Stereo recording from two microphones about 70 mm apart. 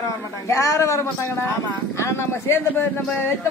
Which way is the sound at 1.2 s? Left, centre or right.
Left.